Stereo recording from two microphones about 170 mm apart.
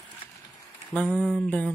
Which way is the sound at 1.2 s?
5° left (ahead or behind).